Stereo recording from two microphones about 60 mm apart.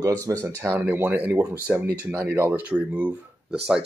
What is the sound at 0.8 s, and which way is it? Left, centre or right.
Speech, right.